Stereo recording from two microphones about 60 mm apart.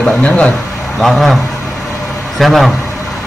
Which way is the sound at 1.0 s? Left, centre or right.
Centre.